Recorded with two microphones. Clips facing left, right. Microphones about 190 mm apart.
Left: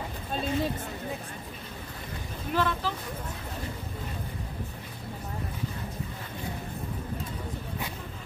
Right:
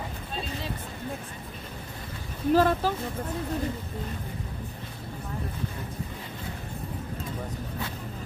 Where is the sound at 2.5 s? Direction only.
45° right (ahead or behind).